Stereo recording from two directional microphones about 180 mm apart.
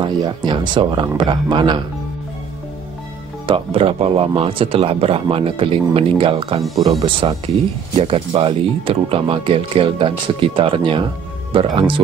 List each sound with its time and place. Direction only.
0.0 s speech: 25° right (ahead or behind)
3.4 s speech: 30° right (ahead or behind)